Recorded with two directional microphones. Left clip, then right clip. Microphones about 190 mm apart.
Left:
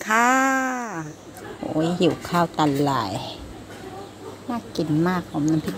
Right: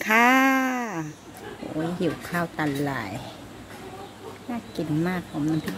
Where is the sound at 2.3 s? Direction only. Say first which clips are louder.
Left 6 dB; 15° left (ahead or behind).